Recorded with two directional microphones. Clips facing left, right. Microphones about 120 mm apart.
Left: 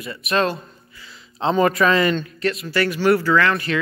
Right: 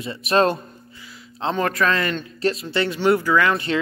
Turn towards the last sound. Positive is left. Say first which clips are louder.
# even
turn(degrees=-25)  # may be behind; listen again after turning